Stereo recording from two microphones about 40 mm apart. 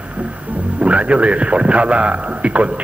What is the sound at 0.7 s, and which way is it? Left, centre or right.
A man's voice, right.